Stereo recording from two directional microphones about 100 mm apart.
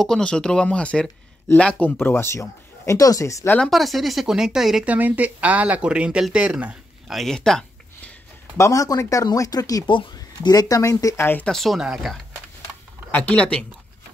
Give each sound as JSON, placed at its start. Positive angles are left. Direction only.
{"t": 0.0, "sound": "speech", "side_deg": 5}
{"t": 3.4, "sound": "speech", "side_deg": 10}
{"t": 4.8, "sound": "speech", "side_deg": -15}
{"t": 7.2, "sound": "a sound", "side_deg": 5}
{"t": 8.5, "sound": "speech", "side_deg": 30}
{"t": 9.8, "sound": "speech", "side_deg": 50}
{"t": 11.4, "sound": "speech", "side_deg": 0}
{"t": 13.1, "sound": "speech", "side_deg": 15}